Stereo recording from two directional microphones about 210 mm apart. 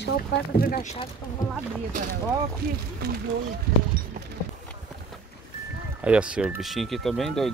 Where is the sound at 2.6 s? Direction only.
45° right (ahead or behind).